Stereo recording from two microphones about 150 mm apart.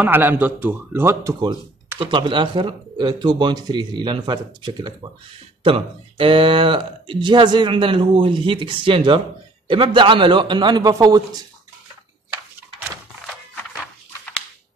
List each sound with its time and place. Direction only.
0.0 s speech: 15° right (ahead or behind)
2.0 s speech: 35° right (ahead or behind)